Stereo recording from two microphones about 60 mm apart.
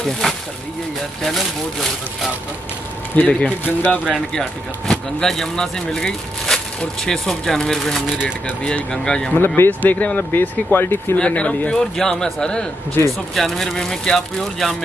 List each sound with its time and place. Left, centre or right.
0.0 s speech: centre
3.2 s speech: left
4.3 s speech: centre
9.8 s speech: left
11.1 s speech: centre
13.0 s speech: left
13.3 s speech: centre